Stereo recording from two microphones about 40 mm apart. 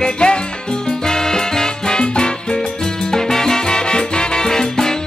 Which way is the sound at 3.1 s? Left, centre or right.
Centre.